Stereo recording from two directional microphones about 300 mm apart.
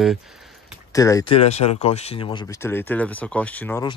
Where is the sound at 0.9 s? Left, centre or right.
Centre.